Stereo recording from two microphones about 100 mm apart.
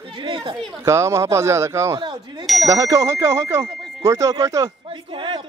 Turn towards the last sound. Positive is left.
turn(degrees=-55)  # may be behind; listen again after turning